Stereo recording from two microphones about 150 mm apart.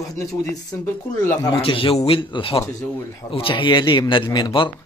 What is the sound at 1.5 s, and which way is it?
A man's voice, 35° left (ahead or behind).